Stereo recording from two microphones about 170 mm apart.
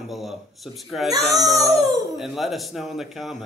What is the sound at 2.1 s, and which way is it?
Speech, centre (ahead or behind).